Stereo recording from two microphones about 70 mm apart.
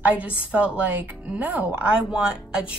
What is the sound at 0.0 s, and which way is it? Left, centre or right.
A woman's voice, right.